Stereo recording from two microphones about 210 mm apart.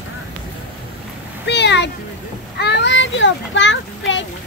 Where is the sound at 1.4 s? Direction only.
55° left (ahead or behind).